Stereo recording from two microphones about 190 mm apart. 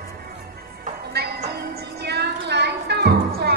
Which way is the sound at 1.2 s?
60° right (ahead or behind).